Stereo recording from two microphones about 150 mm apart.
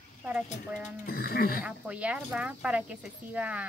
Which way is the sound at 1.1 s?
80° left.